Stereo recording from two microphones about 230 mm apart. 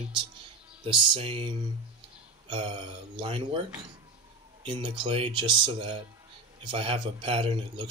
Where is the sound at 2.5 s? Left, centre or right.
Right.